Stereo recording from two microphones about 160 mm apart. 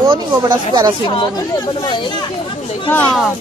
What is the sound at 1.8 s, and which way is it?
Speech, 30° left (ahead or behind).